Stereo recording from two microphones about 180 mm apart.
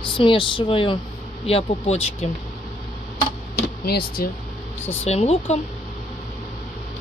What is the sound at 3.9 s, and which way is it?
Speech, 60° left (ahead or behind).